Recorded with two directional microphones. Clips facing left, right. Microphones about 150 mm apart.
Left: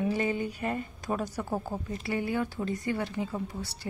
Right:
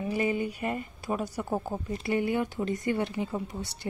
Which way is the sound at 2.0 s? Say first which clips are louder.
Right 3 dB; 20° right (ahead or behind).